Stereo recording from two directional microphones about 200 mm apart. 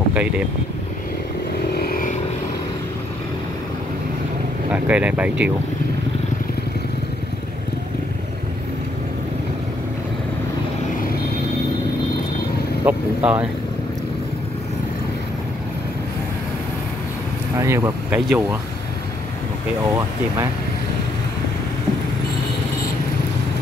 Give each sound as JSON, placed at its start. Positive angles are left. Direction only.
{"t": 0.1, "sound": "vehicle", "side_deg": -5}
{"t": 1.8, "sound": "vehicle", "side_deg": 45}
{"t": 4.6, "sound": "speech", "side_deg": -5}
{"t": 11.0, "sound": "vehicle", "side_deg": 50}
{"t": 12.8, "sound": "speech", "side_deg": -10}
{"t": 17.6, "sound": "speech", "side_deg": -15}